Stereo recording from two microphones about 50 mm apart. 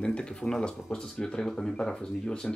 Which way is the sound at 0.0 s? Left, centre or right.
Centre.